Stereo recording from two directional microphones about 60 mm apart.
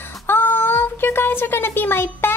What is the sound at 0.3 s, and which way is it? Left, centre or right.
Speech, left.